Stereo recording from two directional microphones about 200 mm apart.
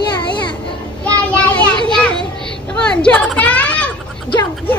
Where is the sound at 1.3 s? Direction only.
5° left (ahead or behind).